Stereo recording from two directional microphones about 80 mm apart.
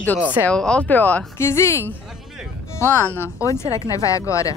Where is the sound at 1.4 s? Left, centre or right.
Left.